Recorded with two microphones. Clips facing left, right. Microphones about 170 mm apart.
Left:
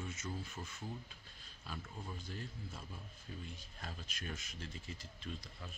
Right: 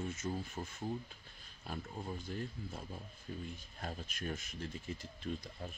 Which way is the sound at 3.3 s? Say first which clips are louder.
Right 5 dB; 45° right (ahead or behind).